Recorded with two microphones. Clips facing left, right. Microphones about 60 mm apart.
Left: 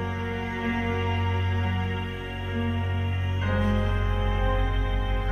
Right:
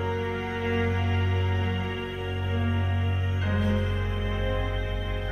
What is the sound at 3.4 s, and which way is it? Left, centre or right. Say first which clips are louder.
Music: left 2 dB; centre.